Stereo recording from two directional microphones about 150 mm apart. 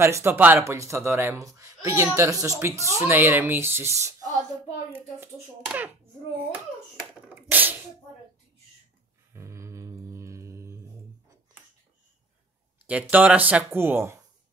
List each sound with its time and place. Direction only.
0.0 s speech: 15° right (ahead or behind)
5.7 s a child's voice: 10° right (ahead or behind)
7.2 s beatboxing: 15° right (ahead or behind)
9.3 s mantra: 20° right (ahead or behind)
12.8 s speech: 10° right (ahead or behind)